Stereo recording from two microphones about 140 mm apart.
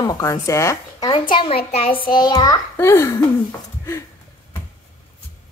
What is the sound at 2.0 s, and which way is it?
A child's voice, 30° left (ahead or behind).